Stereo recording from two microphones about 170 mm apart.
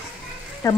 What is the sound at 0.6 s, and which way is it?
Speech, 20° left (ahead or behind).